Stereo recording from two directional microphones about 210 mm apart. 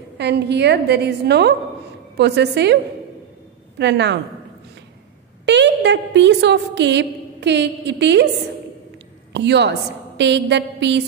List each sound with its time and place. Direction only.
0.2 s a woman's voice: 55° right (ahead or behind)
5.4 s a woman's voice: 55° right (ahead or behind)
9.3 s a woman's voice: 55° right (ahead or behind)